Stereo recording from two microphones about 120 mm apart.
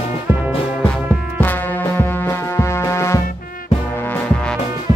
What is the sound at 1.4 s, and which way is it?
Music, 15° left (ahead or behind).